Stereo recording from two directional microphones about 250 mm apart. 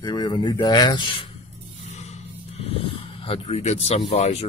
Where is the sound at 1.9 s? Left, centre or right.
Left.